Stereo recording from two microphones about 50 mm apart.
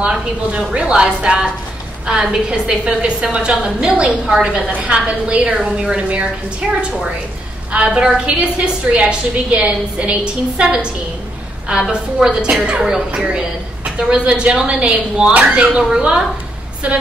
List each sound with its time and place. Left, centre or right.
0.0 s a woman's voice: centre
7.7 s a woman's voice: centre
11.9 s a woman's voice: centre
15.9 s a woman's voice: centre
16.8 s a woman's voice: right